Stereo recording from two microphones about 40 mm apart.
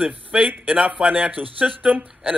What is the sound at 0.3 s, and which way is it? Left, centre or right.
Speech, centre.